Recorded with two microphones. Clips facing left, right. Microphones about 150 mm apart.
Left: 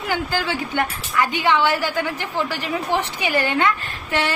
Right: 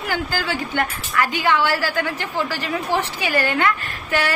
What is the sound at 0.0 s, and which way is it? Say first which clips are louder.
A woman's voice: left 1 dB; 20° left (ahead or behind).